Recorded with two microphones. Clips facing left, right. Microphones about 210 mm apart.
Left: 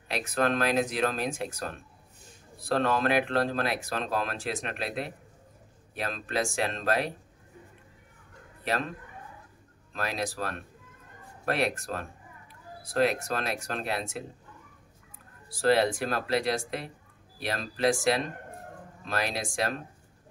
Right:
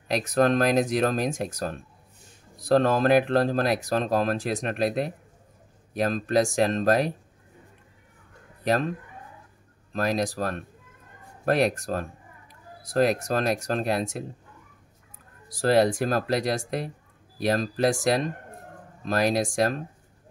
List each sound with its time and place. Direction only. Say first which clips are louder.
0.3 s speech: right 5 dB; 40° right (ahead or behind)
8.6 s speech: right 7 dB; 40° right (ahead or behind)
9.9 s speech: right 7 dB; 40° right (ahead or behind)
15.6 s speech: right 3 dB; 40° right (ahead or behind)
19.0 s speech: right 8 dB; 40° right (ahead or behind)